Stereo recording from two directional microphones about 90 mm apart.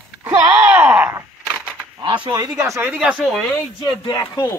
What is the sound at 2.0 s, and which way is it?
Speech, 60° right (ahead or behind).